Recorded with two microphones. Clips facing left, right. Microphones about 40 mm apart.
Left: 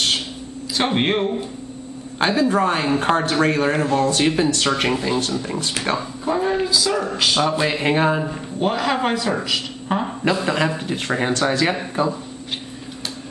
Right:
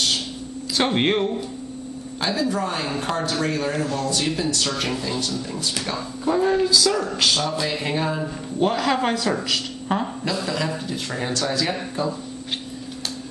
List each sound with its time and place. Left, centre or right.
0.7 s speech: centre
2.1 s speech: left
5.9 s speech: centre
7.4 s speech: left
8.5 s speech: centre
10.2 s speech: left